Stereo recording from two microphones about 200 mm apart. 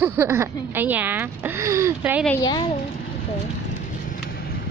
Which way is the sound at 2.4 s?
20° left (ahead or behind).